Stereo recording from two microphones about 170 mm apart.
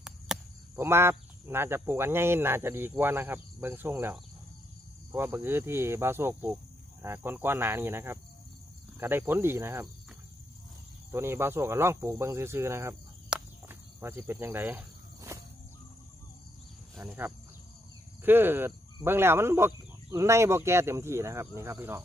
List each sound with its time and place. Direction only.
0.0 s a sound: 5° right (ahead or behind)
0.8 s speech: 15° right (ahead or behind)
11.1 s speech: 15° right (ahead or behind)
13.3 s insect: 15° right (ahead or behind)
17.0 s speech: 10° right (ahead or behind)